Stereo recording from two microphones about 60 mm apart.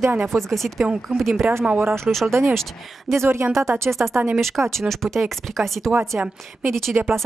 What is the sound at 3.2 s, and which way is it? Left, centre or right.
Speech, right.